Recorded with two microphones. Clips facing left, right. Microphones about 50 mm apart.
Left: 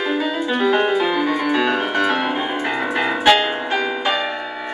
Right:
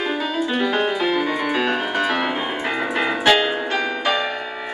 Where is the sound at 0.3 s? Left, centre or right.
Centre.